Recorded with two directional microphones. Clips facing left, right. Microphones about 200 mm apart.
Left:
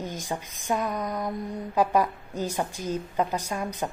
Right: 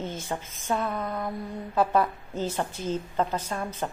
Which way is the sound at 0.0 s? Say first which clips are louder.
Even; 15° left (ahead or behind).